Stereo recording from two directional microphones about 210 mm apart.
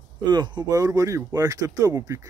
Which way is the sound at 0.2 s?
20° right (ahead or behind).